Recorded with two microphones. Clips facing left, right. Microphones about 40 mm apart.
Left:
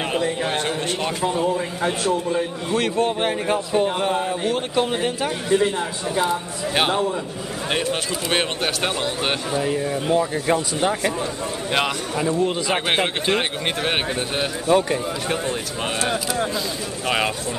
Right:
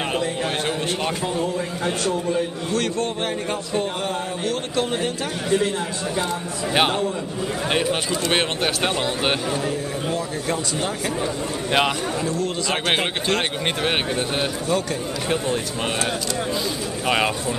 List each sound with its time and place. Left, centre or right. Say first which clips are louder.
0.1 s a man's voice: left 1 dB; centre
6.7 s speech: even; centre
9.6 s a man's voice: left 3 dB; centre
12.2 s a man's voice: left 3 dB; centre
14.7 s speech: left 7 dB; left